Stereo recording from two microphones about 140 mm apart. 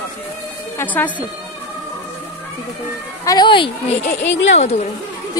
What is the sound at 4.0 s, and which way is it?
Speech, 60° left (ahead or behind).